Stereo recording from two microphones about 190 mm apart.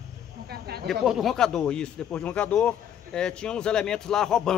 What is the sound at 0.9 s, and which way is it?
Speech, centre (ahead or behind).